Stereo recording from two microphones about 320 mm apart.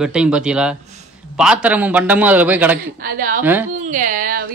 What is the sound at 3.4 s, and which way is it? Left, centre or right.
Speech, centre.